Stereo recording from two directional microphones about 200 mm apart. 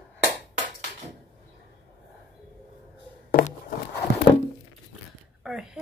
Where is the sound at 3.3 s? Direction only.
45° left (ahead or behind).